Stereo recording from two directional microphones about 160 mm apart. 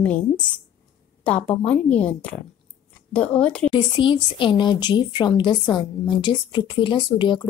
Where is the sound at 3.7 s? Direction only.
30° left (ahead or behind).